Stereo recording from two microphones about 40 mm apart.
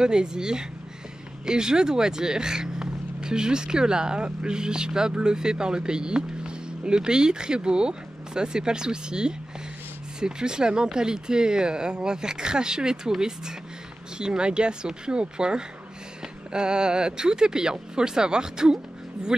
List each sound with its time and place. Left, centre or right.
0.0 s speech: centre